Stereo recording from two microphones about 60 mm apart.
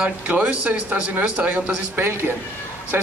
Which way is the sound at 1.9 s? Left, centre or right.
Right.